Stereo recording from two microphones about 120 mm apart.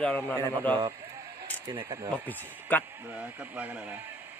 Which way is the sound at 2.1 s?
15° left (ahead or behind).